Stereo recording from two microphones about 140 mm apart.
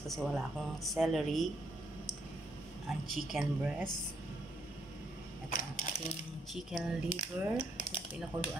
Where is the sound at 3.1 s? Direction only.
5° right (ahead or behind).